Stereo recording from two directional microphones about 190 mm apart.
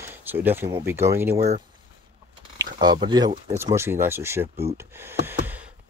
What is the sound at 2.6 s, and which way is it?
Speech, 20° right (ahead or behind).